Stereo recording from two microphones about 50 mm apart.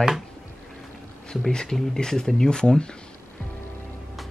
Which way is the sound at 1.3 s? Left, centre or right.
Centre.